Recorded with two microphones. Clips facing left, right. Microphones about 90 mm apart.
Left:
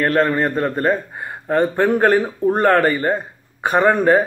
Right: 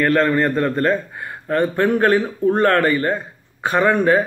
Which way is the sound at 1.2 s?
20° left (ahead or behind).